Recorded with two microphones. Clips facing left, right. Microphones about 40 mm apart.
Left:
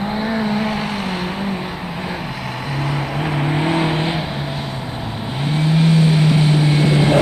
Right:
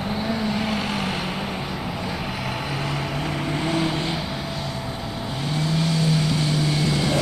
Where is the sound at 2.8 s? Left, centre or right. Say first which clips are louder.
Left 5 dB; centre.